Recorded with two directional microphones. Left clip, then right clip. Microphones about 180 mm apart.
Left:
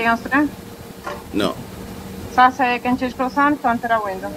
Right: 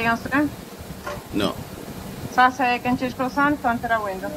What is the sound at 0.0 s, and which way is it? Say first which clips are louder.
Speech: left 4 dB; 20° left (ahead or behind).